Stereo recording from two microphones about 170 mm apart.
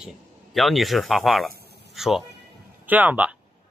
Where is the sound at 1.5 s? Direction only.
70° right (ahead or behind).